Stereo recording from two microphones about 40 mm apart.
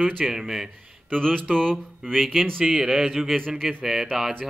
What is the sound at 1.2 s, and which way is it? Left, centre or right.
Mantra, centre.